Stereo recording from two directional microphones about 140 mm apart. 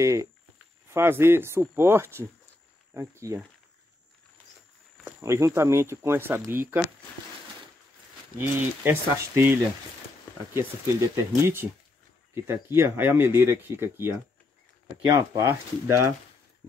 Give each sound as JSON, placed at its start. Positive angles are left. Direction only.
{"t": 0.0, "sound": "speech", "side_deg": -20}
{"t": 5.0, "sound": "speech", "side_deg": -20}
{"t": 8.4, "sound": "speech", "side_deg": -15}